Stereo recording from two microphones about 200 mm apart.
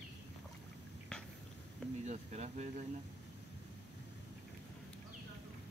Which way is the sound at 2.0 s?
35° right (ahead or behind).